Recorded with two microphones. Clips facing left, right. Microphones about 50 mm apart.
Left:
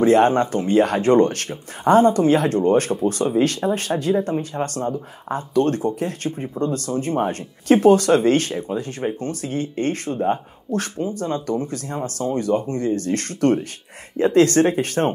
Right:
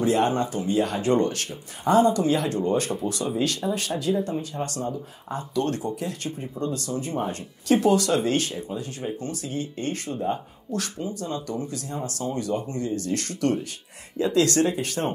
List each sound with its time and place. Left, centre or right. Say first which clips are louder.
0.0 s speech: left 7 dB; left